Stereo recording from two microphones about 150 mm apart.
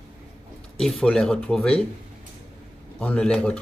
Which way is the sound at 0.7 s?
5° left (ahead or behind).